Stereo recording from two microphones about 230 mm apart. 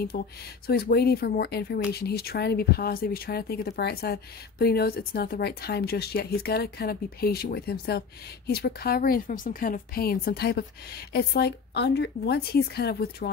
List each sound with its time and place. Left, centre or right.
0.1 s speech: left